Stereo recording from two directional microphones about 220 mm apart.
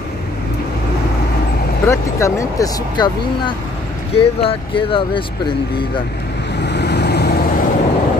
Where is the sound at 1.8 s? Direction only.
10° left (ahead or behind).